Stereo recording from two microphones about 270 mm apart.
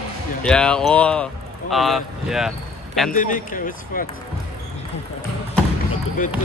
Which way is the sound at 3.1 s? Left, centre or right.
Left.